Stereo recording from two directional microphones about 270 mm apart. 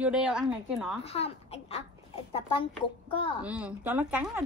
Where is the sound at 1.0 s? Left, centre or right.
Left.